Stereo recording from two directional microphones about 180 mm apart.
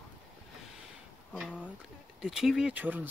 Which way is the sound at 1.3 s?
5° right (ahead or behind).